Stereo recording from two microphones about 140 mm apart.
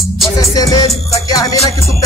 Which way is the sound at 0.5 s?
25° left (ahead or behind).